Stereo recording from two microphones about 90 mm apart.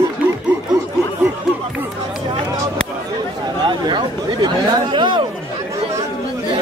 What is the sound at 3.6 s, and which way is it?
Chatter, 55° right (ahead or behind).